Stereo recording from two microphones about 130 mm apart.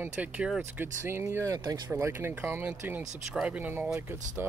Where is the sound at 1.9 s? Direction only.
20° right (ahead or behind).